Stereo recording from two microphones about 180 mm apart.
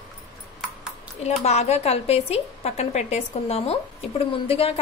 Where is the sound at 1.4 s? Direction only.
35° left (ahead or behind).